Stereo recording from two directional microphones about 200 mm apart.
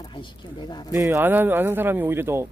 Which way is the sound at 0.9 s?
15° right (ahead or behind).